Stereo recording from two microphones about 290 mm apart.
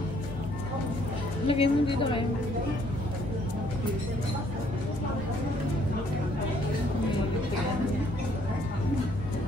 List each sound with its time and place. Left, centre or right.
1.5 s a woman's voice: centre